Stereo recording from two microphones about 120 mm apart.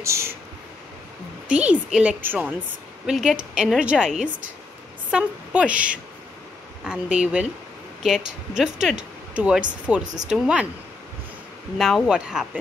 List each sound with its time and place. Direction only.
0.0 s a sound: 25° right (ahead or behind)
1.5 s a woman's voice: 10° right (ahead or behind)
11.8 s a woman's voice: centre (ahead or behind)